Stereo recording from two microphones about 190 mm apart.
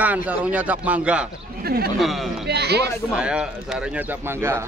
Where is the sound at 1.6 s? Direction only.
55° right (ahead or behind).